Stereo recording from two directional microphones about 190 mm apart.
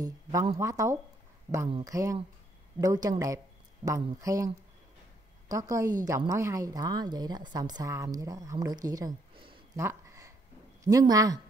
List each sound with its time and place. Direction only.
0.0 s speech: 20° right (ahead or behind)
5.5 s a woman's voice: 15° right (ahead or behind)
9.8 s a sound: 15° right (ahead or behind)
10.8 s a woman's voice: 20° right (ahead or behind)